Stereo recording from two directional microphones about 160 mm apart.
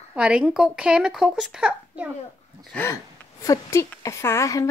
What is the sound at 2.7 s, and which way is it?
A woman's voice, 15° left (ahead or behind).